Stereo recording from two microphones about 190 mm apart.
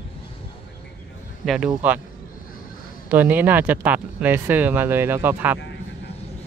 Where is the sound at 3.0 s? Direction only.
10° right (ahead or behind).